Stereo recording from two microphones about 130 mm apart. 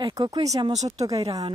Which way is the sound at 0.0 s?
35° right (ahead or behind).